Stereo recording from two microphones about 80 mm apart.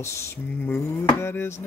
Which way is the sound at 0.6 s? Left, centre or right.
Left.